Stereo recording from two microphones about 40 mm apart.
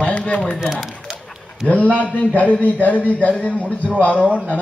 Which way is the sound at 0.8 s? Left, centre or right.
Centre.